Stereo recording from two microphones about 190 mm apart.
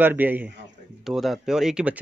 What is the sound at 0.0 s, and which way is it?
Speech, 10° right (ahead or behind).